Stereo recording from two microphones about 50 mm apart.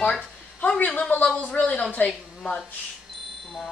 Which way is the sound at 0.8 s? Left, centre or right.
Left.